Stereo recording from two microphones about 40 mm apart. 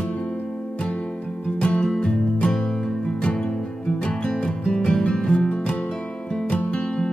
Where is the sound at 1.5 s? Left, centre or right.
Left.